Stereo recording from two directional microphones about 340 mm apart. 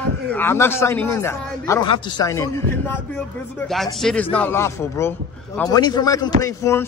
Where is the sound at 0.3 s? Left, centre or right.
Centre.